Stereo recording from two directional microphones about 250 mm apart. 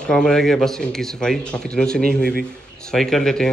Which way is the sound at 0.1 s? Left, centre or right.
Centre.